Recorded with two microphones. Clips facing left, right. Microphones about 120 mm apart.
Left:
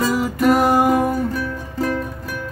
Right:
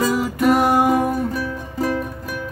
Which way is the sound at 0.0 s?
Centre (ahead or behind).